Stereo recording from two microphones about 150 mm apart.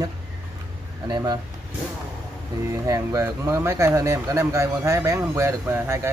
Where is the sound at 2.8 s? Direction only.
25° right (ahead or behind).